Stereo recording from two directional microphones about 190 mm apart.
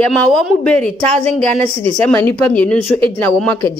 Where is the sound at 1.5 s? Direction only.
35° right (ahead or behind).